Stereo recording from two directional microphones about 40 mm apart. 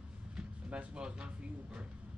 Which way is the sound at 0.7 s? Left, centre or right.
Right.